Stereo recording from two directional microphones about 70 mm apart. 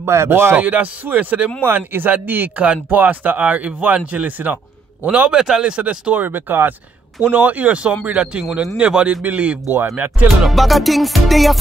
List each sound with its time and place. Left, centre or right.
0.0 s speech: right
0.6 s speech: right
6.1 s speech: right
7.2 s speech: centre
10.4 s music: centre